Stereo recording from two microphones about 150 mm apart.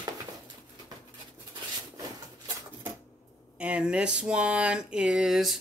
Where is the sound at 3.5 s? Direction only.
10° right (ahead or behind).